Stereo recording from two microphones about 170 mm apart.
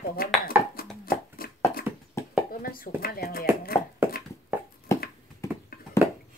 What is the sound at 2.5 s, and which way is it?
Speech, 55° left (ahead or behind).